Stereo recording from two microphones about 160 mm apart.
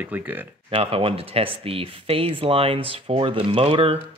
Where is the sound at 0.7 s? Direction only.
35° right (ahead or behind).